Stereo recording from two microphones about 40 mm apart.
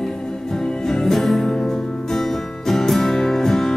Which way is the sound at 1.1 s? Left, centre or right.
Centre.